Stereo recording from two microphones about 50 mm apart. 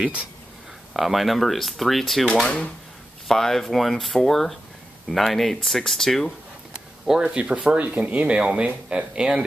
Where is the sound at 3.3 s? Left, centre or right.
Centre.